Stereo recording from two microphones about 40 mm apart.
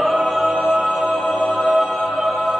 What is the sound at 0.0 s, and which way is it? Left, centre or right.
Music, centre.